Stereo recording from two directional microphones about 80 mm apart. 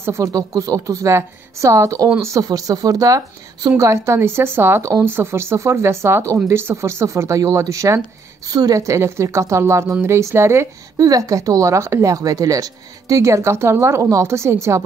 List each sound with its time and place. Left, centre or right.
0.0 s speech: right
0.3 s speech: right
2.4 s speech: right
8.5 s speech: right
11.0 s speech: right